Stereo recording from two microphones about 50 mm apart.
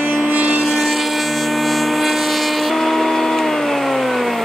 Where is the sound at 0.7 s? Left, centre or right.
Centre.